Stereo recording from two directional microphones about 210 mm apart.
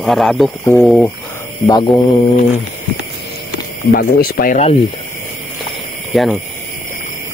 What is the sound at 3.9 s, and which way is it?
Speech, 45° left (ahead or behind).